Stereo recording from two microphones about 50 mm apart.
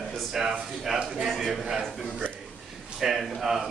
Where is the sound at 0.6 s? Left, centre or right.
Centre.